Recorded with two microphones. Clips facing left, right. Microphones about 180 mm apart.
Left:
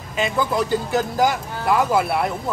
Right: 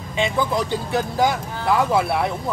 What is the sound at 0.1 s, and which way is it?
Speech, 5° left (ahead or behind).